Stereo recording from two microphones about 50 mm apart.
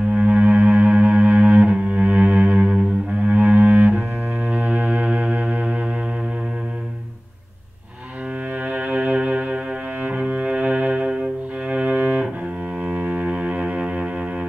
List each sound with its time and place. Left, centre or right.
0.1 s cello: right
4.5 s music: right
8.6 s music: right
10.0 s cello: right
12.7 s cello: centre